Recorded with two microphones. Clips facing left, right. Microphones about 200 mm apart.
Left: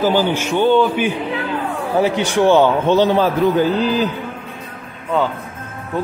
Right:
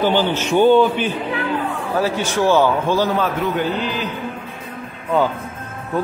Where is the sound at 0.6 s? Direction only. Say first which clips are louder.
Right 2 dB; 5° right (ahead or behind).